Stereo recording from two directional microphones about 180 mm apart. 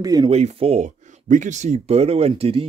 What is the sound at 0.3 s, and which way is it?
Speech, 35° right (ahead or behind).